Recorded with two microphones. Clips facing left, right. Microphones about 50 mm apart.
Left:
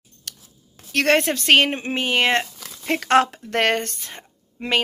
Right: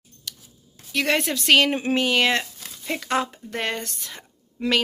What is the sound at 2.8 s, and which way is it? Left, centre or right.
Speech, left.